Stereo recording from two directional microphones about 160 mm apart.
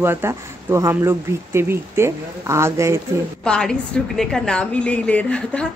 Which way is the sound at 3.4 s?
5° left (ahead or behind).